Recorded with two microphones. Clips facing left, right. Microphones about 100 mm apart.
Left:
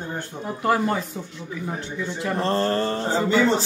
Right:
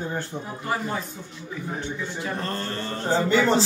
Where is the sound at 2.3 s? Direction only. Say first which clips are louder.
Left 8 dB; 30° left (ahead or behind).